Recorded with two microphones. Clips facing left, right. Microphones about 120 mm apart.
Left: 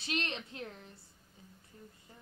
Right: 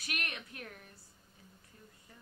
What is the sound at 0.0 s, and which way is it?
Speech, 25° left (ahead or behind).